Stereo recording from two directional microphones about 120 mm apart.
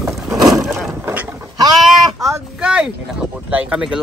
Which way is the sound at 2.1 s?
25° right (ahead or behind).